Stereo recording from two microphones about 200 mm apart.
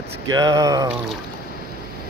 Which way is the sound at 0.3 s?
20° right (ahead or behind).